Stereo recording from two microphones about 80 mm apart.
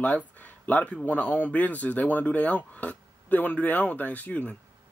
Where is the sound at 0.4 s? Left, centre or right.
Left.